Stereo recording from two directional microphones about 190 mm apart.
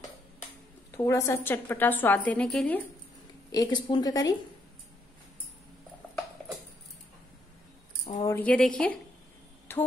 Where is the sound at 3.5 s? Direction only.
20° left (ahead or behind).